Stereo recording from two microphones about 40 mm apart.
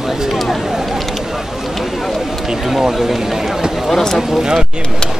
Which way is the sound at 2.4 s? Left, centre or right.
Centre.